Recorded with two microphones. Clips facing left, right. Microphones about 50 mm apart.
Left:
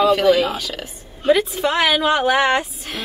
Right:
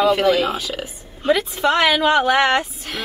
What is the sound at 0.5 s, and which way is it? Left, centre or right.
Speech, centre.